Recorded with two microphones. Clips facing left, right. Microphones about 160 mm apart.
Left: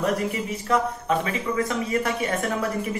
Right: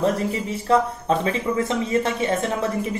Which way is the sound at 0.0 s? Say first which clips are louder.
Right 3 dB; 30° right (ahead or behind).